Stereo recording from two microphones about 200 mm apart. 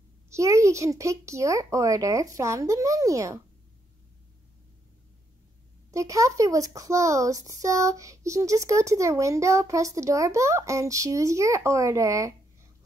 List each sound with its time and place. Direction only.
0.3 s a child's voice: 15° right (ahead or behind)
5.9 s a child's voice: 15° right (ahead or behind)